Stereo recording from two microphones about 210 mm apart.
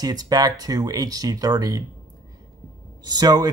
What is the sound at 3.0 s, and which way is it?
Speech, 20° right (ahead or behind).